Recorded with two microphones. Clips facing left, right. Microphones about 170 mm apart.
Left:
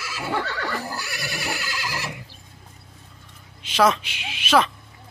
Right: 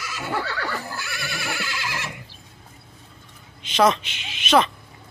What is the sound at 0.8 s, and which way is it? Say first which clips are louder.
Neigh: left 1 dB; 40° left (ahead or behind).